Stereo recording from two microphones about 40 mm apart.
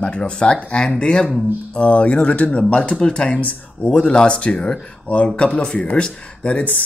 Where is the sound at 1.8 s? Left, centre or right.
Left.